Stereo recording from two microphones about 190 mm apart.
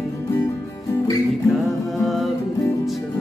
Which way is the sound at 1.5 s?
Centre (ahead or behind).